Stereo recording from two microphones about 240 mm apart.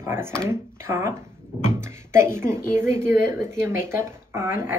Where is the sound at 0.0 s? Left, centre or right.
Centre.